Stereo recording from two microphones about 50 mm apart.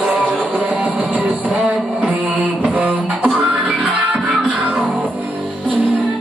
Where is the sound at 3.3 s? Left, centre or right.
Right; by 4.5 s centre.